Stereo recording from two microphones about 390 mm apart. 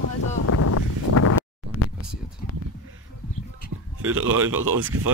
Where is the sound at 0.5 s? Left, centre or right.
Left.